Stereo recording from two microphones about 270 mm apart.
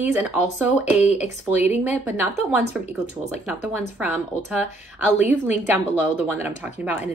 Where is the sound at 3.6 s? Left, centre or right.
Centre.